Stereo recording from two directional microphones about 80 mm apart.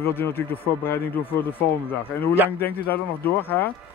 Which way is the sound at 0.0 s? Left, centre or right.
Left.